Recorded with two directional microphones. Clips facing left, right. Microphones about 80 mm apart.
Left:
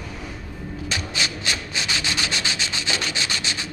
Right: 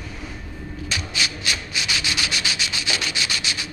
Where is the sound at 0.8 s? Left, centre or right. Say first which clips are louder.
Even; left.